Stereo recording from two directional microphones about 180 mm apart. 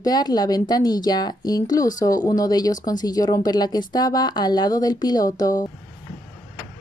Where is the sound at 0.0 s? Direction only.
20° left (ahead or behind).